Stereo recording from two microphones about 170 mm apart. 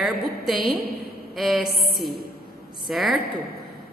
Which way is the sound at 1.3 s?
Centre (ahead or behind).